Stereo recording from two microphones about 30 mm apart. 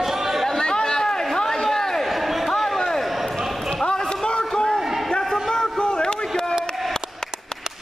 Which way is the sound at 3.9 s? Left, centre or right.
Left.